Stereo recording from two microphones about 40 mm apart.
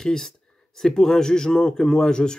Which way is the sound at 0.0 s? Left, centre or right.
Centre.